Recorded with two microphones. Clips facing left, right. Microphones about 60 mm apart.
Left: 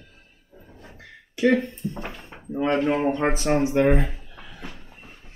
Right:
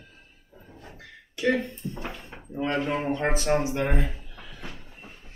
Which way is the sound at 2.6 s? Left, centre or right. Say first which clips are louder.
Left 5 dB; left.